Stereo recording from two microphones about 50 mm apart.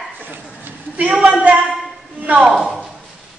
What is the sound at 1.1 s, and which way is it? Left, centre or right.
Speech, centre.